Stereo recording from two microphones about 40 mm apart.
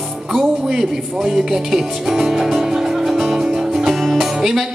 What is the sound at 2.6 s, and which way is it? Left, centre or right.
Music, centre.